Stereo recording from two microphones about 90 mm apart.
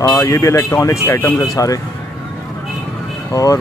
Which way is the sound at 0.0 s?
40° left (ahead or behind).